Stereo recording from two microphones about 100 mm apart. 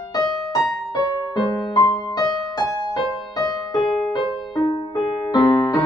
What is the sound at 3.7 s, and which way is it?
Music, centre (ahead or behind).